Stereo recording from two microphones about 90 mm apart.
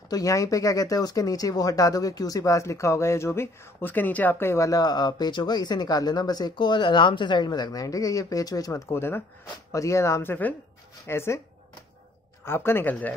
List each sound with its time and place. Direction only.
0.1 s speech: 40° left (ahead or behind)
4.6 s speech: 50° left (ahead or behind); by 11.4 s 30° left (ahead or behind)
12.4 s speech: 25° left (ahead or behind)